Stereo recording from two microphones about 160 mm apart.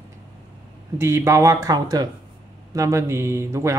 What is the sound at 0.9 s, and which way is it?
A woman's voice, 15° right (ahead or behind).